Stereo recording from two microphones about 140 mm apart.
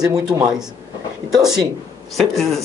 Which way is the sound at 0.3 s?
15° right (ahead or behind).